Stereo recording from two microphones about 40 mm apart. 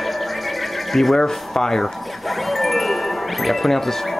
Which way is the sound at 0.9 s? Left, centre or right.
Centre.